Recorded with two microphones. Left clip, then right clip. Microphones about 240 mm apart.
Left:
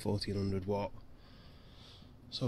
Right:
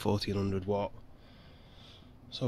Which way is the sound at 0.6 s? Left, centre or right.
Centre.